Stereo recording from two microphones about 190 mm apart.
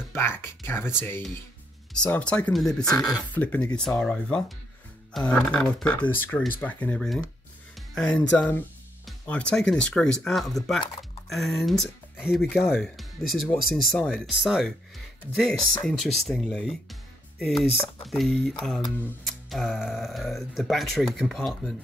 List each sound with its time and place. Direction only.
0.1 s speech: 10° left (ahead or behind)
13.9 s speech: centre (ahead or behind)
17.4 s music: centre (ahead or behind)
18.0 s speech: centre (ahead or behind)